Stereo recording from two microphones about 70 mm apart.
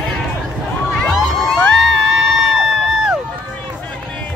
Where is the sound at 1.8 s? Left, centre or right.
Centre.